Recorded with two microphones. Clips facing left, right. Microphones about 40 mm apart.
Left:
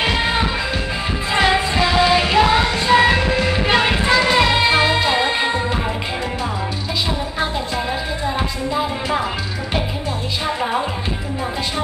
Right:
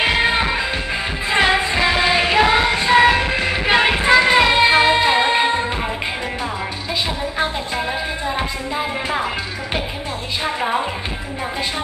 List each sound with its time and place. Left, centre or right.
0.0 s music: centre
7.3 s music: centre
10.4 s music: centre